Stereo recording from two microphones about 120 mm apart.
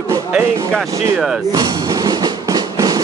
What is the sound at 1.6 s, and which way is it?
Music, 35° right (ahead or behind).